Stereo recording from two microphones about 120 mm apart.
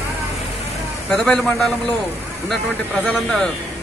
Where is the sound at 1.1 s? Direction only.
5° left (ahead or behind).